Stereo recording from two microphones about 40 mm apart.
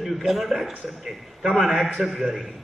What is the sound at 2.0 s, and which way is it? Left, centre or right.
Speech, centre.